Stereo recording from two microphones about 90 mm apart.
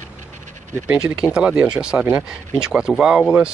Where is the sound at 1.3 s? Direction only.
10° right (ahead or behind).